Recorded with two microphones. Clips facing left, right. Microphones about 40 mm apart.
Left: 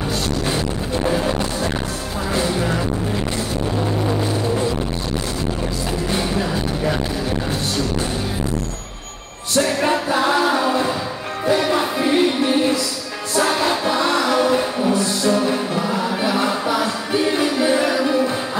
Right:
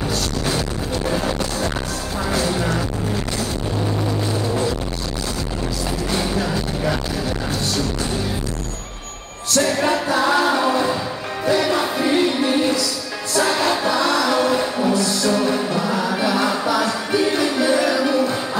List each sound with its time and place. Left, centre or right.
0.5 s music: left
2.3 s music: left
4.3 s music: left
6.1 s music: left
9.6 s music: centre
10.3 s singing: centre
11.5 s music: left
11.8 s music: centre
12.4 s music: left